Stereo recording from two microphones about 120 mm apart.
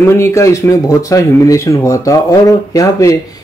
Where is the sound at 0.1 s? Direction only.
25° left (ahead or behind).